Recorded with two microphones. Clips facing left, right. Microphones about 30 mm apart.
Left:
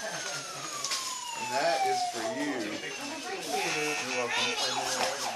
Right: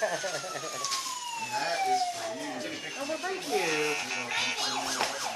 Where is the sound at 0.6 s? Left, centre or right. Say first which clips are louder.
Right 2 dB; centre.